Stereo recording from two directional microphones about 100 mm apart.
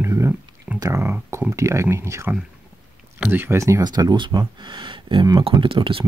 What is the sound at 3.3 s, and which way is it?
Speech, 25° right (ahead or behind).